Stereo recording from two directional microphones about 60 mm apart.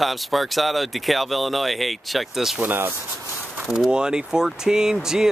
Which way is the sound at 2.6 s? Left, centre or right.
Right.